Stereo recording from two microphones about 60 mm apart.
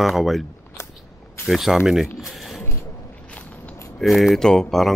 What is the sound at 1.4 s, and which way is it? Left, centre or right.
Speech, centre.